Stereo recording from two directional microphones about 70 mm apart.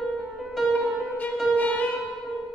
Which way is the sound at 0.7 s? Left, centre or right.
Centre.